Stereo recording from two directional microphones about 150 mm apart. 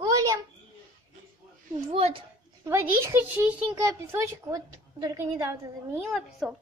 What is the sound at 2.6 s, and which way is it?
A child's voice, 20° right (ahead or behind).